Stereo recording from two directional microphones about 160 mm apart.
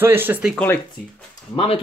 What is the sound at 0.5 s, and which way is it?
Speech, 10° left (ahead or behind).